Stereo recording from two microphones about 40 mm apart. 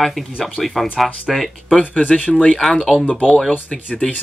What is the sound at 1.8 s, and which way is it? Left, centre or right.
Speech, left.